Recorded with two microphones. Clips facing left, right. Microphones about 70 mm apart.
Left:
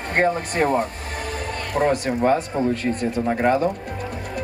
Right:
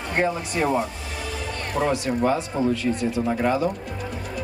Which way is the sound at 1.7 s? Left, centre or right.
Left.